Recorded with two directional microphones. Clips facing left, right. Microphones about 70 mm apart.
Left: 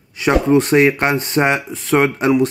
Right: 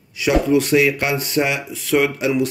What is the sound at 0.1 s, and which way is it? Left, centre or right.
Speech, left.